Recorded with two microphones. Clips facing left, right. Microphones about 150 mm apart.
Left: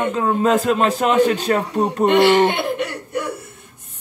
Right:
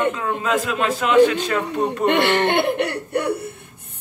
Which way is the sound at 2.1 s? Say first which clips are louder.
Left 5 dB; 60° right (ahead or behind).